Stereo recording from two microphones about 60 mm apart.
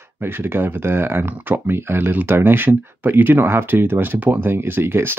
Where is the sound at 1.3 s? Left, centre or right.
Right.